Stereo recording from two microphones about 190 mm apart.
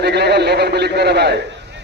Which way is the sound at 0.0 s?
60° right (ahead or behind).